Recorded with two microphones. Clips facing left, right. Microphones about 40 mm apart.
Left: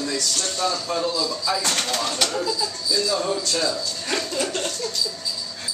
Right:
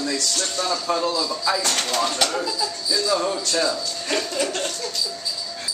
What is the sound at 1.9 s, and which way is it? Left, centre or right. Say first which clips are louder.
Speech: right 2 dB; centre.